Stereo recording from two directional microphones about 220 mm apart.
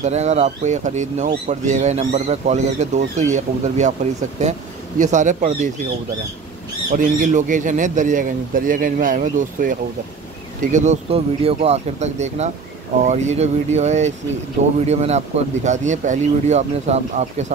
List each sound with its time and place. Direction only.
0.0 s speech: 30° right (ahead or behind)
6.9 s speech: 35° right (ahead or behind)